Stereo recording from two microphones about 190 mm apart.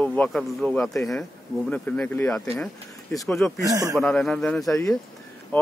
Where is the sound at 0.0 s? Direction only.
5° left (ahead or behind).